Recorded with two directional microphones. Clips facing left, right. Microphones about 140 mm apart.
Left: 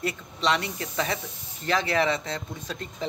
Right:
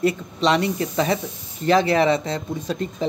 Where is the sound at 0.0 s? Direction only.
25° right (ahead or behind).